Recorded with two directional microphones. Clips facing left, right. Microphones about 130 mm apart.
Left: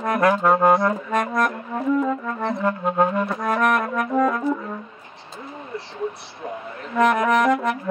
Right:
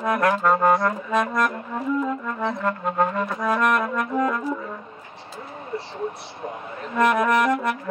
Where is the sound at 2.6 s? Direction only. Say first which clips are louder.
Left 4 dB; 15° left (ahead or behind).